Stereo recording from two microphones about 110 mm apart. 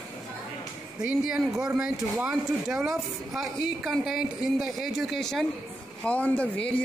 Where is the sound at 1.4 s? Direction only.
Centre (ahead or behind).